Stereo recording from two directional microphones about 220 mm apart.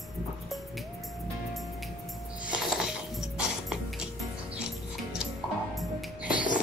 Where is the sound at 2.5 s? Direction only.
Centre (ahead or behind).